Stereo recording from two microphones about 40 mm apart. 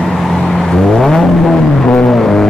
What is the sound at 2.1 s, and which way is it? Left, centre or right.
Music, centre.